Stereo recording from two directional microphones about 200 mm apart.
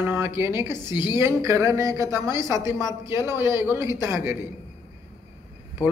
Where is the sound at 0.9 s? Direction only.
20° left (ahead or behind).